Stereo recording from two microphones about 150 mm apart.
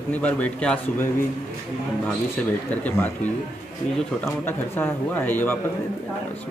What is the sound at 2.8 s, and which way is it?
Speech, 10° left (ahead or behind).